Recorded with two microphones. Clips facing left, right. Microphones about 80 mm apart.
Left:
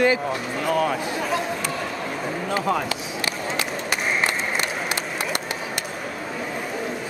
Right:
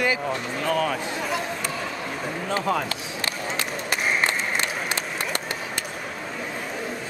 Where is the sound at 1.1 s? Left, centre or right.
Centre.